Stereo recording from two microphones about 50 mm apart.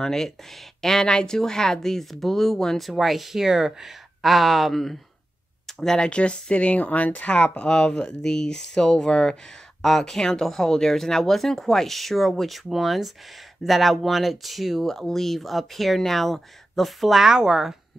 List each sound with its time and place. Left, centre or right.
0.0 s speech: centre
2.9 s speech: centre
6.0 s speech: left; by 17.7 s centre